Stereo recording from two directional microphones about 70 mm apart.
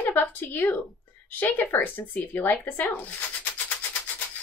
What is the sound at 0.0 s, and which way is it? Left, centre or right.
A woman's voice, left.